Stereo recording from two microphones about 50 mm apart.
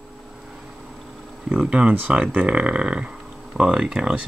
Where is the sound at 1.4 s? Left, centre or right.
Centre.